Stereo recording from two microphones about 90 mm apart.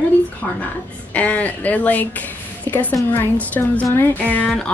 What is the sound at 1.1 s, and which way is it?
A woman's voice, 15° left (ahead or behind).